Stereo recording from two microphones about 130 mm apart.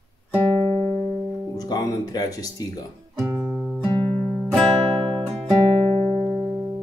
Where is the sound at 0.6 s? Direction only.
Centre (ahead or behind).